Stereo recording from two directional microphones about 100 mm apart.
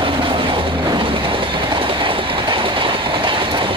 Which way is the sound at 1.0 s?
60° right (ahead or behind).